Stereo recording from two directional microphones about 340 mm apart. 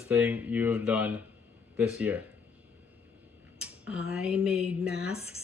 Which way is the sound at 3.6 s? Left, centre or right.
Centre.